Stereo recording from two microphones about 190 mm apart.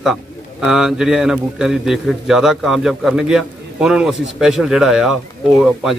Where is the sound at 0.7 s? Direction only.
Centre (ahead or behind).